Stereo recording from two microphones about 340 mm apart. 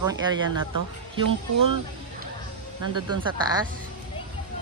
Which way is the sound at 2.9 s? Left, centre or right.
Centre.